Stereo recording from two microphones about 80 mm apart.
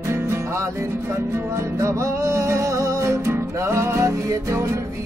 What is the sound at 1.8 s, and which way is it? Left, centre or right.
Music, right.